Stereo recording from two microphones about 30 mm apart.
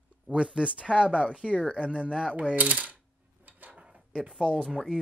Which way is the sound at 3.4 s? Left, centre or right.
Right.